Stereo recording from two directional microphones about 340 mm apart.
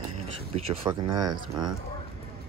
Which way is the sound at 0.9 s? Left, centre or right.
Centre.